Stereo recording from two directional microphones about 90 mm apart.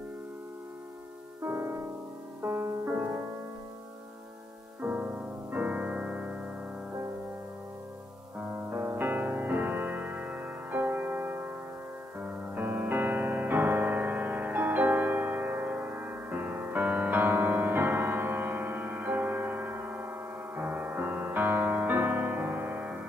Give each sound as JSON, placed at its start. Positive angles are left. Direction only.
{"t": 1.4, "sound": "music", "side_deg": -30}
{"t": 4.8, "sound": "music", "side_deg": -15}
{"t": 8.4, "sound": "music", "side_deg": -20}